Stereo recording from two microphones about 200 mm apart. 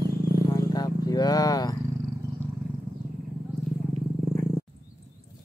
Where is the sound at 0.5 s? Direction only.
20° left (ahead or behind).